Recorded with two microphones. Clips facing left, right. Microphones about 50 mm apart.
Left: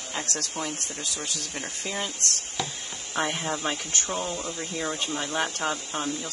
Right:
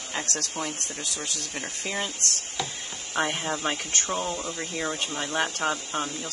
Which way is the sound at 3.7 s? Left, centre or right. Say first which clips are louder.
Right 1 dB; right.